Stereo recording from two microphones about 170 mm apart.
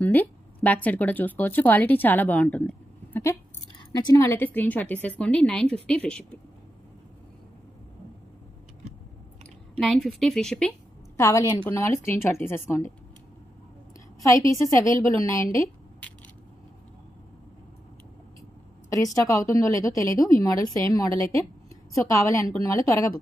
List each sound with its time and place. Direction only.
0.0 s a woman's voice: 10° left (ahead or behind)
9.8 s a woman's voice: 5° left (ahead or behind)
11.1 s a woman's voice: 15° left (ahead or behind)
14.2 s a woman's voice: 20° left (ahead or behind)
19.2 s a woman's voice: 20° left (ahead or behind)